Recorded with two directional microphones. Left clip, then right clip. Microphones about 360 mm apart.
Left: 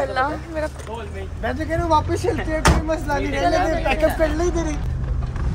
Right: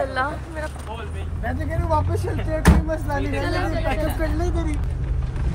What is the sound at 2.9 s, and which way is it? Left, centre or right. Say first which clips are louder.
Speech: left 3 dB; left.